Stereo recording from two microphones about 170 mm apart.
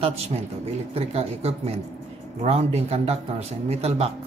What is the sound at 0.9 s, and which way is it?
Speech, 35° right (ahead or behind).